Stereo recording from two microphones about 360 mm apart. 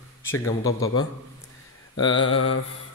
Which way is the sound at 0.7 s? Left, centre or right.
Left.